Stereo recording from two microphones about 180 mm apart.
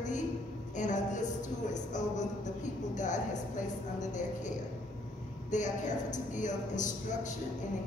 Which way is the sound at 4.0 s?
45° left (ahead or behind).